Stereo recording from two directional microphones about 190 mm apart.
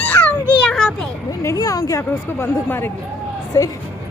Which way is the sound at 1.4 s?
15° left (ahead or behind).